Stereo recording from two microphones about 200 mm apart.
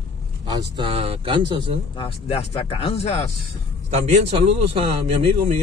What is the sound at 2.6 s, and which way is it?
Speech, 30° left (ahead or behind).